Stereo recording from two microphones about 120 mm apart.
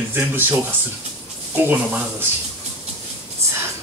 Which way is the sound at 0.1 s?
15° right (ahead or behind).